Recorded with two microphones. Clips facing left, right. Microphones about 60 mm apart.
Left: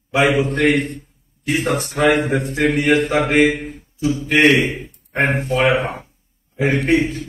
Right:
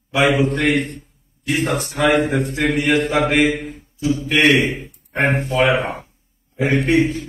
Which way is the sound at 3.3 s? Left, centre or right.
Left.